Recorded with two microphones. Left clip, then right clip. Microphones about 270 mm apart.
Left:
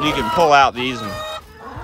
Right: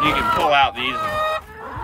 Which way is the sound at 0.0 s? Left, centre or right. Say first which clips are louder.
Left 1 dB; centre.